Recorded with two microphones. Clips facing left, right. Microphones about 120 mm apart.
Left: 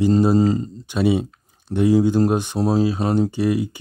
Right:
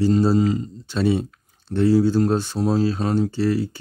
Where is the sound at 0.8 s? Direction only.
10° left (ahead or behind).